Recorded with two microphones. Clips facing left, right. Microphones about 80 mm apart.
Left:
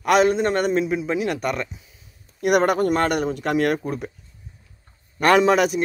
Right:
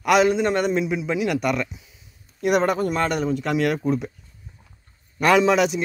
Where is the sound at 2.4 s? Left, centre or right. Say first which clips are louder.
Left 2 dB; left.